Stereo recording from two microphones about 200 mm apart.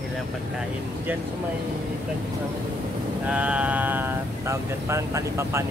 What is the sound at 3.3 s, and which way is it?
Speech, 5° right (ahead or behind).